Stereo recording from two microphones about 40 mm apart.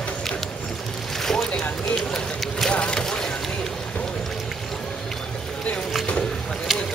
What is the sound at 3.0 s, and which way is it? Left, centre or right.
Vehicle, centre.